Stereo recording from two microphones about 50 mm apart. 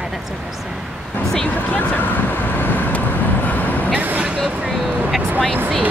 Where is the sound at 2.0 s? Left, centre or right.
Left.